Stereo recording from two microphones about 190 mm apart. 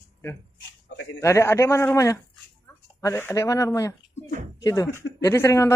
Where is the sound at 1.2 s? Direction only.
15° left (ahead or behind).